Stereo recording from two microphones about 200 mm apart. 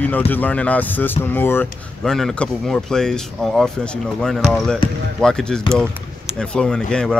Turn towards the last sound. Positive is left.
turn(degrees=5)  # may be behind; listen again after turning